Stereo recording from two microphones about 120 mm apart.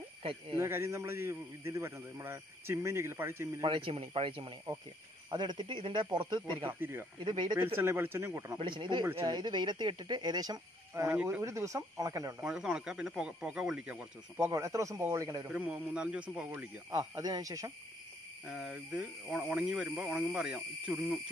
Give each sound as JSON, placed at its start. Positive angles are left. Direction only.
{"t": 0.5, "sound": "a man's voice", "side_deg": -25}
{"t": 3.6, "sound": "speech", "side_deg": -45}
{"t": 6.8, "sound": "a man's voice", "side_deg": -20}
{"t": 7.2, "sound": "speech", "side_deg": -40}
{"t": 7.6, "sound": "a man's voice", "side_deg": -20}
{"t": 8.5, "sound": "speech", "side_deg": -40}
{"t": 9.0, "sound": "speech", "side_deg": -30}
{"t": 11.1, "sound": "speech", "side_deg": -15}
{"t": 11.4, "sound": "a man's voice", "side_deg": -25}
{"t": 12.4, "sound": "speech", "side_deg": -5}
{"t": 14.4, "sound": "a man's voice", "side_deg": -25}
{"t": 15.5, "sound": "speech", "side_deg": -10}
{"t": 16.9, "sound": "speech", "side_deg": -35}
{"t": 18.5, "sound": "speech", "side_deg": -10}